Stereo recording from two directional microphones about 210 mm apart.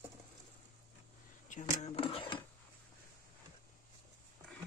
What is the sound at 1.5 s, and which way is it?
Speech, 35° left (ahead or behind).